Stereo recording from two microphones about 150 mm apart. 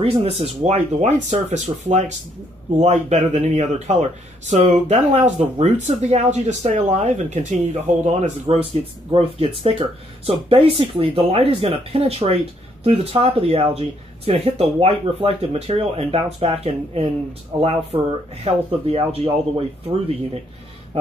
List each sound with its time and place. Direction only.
0.0 s speech: 40° right (ahead or behind)